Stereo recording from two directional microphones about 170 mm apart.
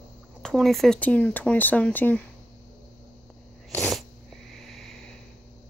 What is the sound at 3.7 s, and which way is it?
Sneeze, 5° left (ahead or behind).